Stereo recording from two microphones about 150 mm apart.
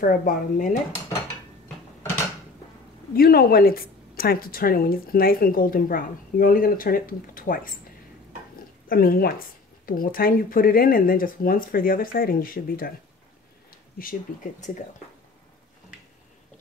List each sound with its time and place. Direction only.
0.0 s speech: 65° left (ahead or behind)
3.2 s speech: 85° left; by 7.7 s 70° left (ahead or behind)
8.8 s speech: 75° left (ahead or behind)
9.8 s speech: 70° left (ahead or behind)